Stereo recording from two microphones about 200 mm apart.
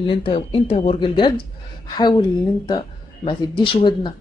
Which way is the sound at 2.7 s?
20° left (ahead or behind).